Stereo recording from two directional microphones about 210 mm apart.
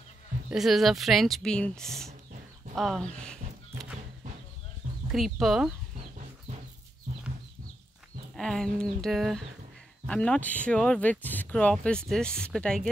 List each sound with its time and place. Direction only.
0.5 s speech: centre (ahead or behind)
2.7 s a sound: centre (ahead or behind)
5.1 s speech: centre (ahead or behind)
7.1 s chicken: 30° right (ahead or behind)
8.4 s speech: centre (ahead or behind)